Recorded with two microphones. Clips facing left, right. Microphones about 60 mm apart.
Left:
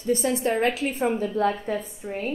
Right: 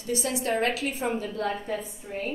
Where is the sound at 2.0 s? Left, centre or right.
Left.